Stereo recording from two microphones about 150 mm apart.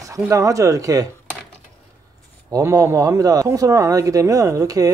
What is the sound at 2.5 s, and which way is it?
Speech, 20° right (ahead or behind).